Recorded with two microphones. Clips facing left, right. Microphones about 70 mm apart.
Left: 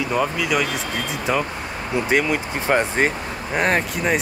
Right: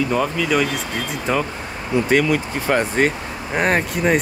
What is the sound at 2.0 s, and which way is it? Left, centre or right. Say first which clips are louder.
Speech: right 2 dB; centre.